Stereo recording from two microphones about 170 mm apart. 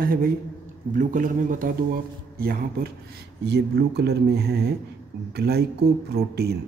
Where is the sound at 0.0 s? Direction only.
60° right (ahead or behind).